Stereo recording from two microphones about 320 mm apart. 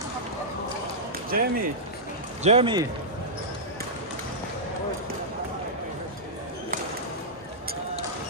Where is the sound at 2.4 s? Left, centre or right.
Centre.